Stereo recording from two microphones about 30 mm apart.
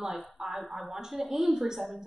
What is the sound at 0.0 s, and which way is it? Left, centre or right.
A woman's voice, centre.